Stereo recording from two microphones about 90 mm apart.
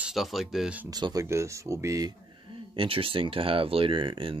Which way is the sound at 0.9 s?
45° right (ahead or behind).